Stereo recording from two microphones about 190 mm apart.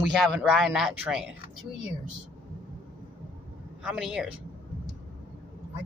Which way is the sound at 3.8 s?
5° right (ahead or behind).